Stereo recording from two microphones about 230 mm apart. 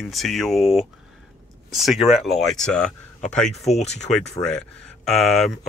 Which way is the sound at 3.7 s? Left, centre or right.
Left.